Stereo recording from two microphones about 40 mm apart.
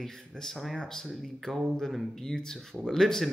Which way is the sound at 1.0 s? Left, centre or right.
Centre.